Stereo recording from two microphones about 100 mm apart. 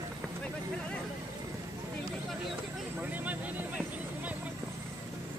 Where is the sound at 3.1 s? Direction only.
15° right (ahead or behind).